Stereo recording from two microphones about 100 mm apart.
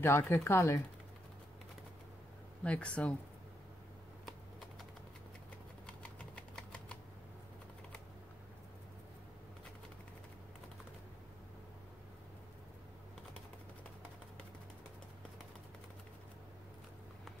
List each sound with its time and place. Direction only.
0.0 s speech: 25° left (ahead or behind)
2.6 s speech: 10° left (ahead or behind)
5.9 s typewriter: 10° left (ahead or behind)